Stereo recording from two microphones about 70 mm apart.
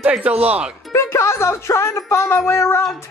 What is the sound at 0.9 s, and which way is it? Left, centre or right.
Speech, left.